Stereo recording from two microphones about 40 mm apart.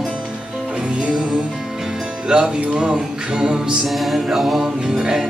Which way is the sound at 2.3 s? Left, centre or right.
Right.